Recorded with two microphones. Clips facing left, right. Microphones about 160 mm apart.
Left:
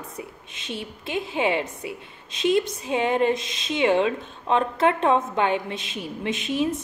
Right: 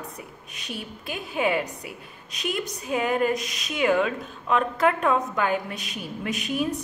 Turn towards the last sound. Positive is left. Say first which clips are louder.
# left 2 dB
turn(degrees=25)  # may be behind; listen again after turning